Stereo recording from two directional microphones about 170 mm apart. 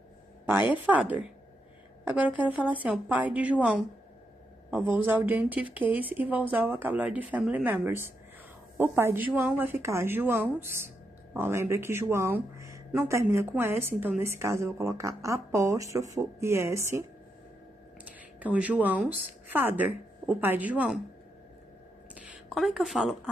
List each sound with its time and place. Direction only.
0.5 s speech: 10° right (ahead or behind)
4.6 s speech: 10° right (ahead or behind)
18.4 s speech: 10° right (ahead or behind)
22.1 s a sound: 5° right (ahead or behind)